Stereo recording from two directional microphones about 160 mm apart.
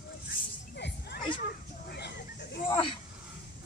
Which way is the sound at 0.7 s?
90° left.